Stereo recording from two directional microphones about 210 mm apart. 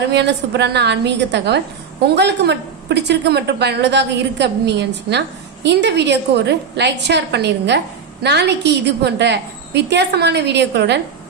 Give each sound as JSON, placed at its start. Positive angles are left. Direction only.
{"t": 0.1, "sound": "a woman's voice", "side_deg": -55}